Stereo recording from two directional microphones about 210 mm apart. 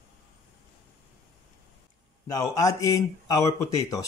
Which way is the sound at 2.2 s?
15° left (ahead or behind).